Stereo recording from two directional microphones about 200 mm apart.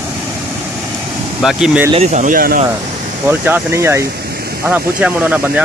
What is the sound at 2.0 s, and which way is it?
Speech, 40° right (ahead or behind).